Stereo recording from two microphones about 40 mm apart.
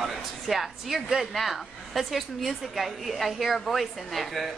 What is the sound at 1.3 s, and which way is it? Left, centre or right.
A woman's voice, centre.